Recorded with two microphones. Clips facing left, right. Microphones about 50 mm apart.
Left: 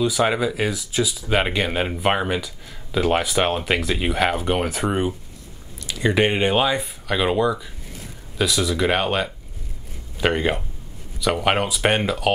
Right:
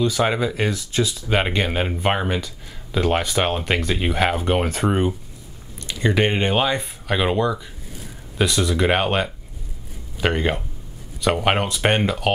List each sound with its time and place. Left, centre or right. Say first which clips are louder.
0.0 s speech: even; centre